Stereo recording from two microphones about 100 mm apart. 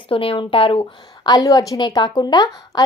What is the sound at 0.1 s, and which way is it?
Speech, 65° left (ahead or behind).